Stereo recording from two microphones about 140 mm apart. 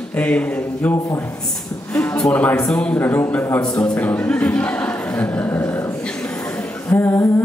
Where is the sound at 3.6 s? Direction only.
30° left (ahead or behind).